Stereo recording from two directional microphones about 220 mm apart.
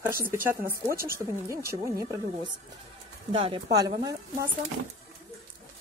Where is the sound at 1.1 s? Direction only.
15° right (ahead or behind).